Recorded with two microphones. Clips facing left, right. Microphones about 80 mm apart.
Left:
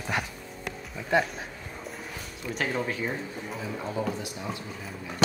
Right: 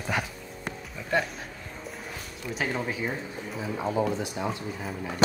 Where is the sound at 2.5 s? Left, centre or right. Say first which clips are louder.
Left 1 dB; centre.